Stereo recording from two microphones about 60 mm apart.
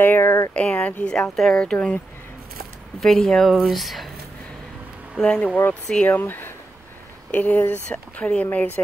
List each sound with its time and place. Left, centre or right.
0.0 s speech: left
0.6 s speech: left
1.3 s speech: centre
1.6 s speech: centre
3.0 s speech: centre
5.2 s speech: centre
6.0 s speech: left
8.5 s speech: left